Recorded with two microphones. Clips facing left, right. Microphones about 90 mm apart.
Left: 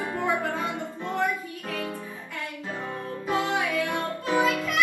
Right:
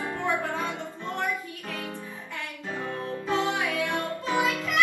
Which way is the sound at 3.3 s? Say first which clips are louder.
Left 1 dB; 15° left (ahead or behind).